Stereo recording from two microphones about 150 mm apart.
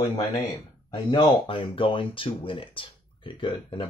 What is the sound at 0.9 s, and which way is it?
Speech, 35° left (ahead or behind).